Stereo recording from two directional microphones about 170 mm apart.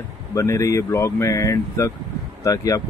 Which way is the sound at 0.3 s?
20° left (ahead or behind).